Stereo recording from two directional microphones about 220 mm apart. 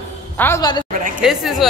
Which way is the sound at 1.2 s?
Centre (ahead or behind).